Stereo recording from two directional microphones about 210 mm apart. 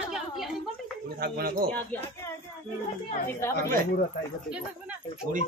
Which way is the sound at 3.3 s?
10° left (ahead or behind).